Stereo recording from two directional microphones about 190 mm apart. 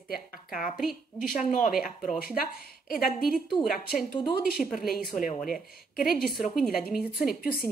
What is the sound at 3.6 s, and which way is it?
A woman's voice, centre (ahead or behind).